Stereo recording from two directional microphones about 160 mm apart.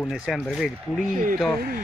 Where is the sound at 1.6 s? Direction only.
65° right (ahead or behind).